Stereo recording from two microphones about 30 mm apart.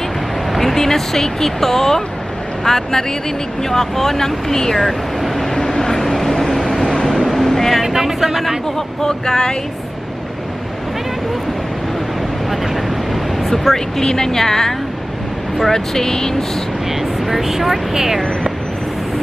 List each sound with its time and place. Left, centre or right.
0.5 s a sound: centre
0.7 s speech: centre
4.7 s vehicle: centre
5.6 s vehicle: centre
7.8 s music: centre
8.7 s speech: centre
13.4 s speech: centre
17.0 s speech: centre